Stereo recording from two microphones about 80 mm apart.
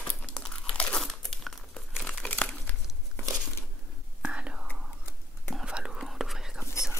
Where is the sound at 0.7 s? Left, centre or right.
Centre.